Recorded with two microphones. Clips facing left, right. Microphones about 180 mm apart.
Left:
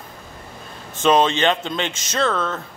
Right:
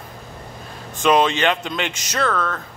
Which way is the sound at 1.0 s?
25° left (ahead or behind).